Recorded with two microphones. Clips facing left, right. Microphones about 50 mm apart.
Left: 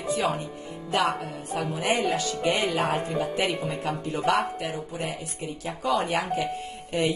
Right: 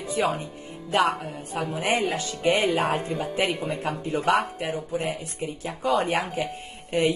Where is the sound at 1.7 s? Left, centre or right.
Right.